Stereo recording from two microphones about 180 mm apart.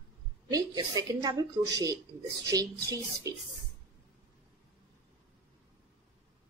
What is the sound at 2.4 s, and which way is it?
Speech, 20° right (ahead or behind).